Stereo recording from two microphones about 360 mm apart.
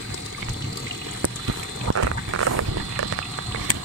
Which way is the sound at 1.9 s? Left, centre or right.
Right.